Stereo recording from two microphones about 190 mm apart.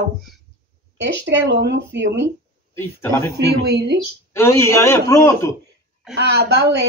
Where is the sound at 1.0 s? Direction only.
70° right (ahead or behind).